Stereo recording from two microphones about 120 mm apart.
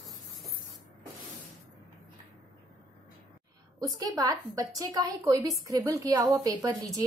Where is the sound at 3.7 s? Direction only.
30° right (ahead or behind).